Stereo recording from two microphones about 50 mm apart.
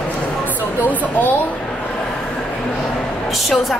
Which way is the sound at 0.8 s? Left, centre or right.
Left.